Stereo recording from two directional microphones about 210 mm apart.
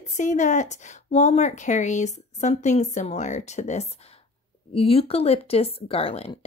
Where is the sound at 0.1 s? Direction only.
35° left (ahead or behind).